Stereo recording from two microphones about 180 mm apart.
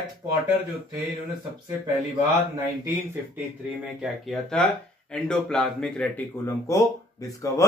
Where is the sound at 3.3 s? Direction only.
5° right (ahead or behind).